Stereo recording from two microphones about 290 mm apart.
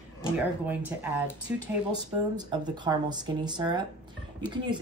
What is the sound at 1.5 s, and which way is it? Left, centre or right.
A woman's voice, centre.